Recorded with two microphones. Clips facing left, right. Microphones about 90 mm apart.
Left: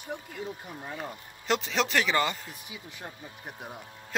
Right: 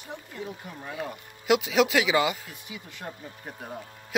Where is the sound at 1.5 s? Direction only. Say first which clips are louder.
Right 6 dB; 10° right (ahead or behind).